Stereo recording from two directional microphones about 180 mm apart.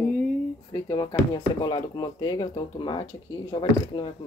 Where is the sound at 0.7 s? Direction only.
20° left (ahead or behind).